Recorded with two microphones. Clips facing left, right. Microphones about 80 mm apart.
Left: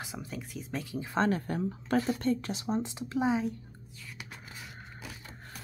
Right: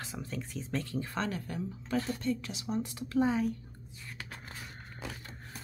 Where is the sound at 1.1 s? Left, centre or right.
Left.